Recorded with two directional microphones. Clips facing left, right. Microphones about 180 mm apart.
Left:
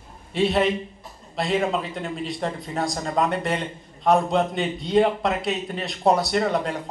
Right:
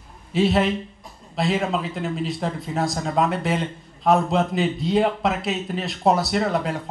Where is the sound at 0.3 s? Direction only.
Centre (ahead or behind).